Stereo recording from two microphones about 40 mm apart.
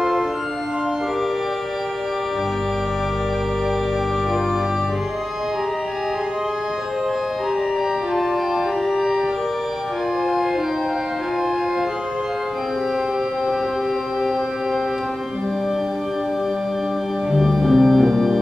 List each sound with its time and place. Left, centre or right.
8.2 s organ: centre
17.3 s organ: centre